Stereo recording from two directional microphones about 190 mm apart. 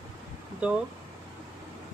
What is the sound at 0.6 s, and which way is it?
Speech, 5° right (ahead or behind).